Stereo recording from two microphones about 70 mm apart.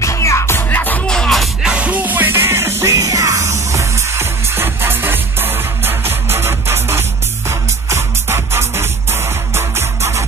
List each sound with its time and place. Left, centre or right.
0.0 s music: left
1.0 s music: centre
1.6 s music: centre; by 10.2 s right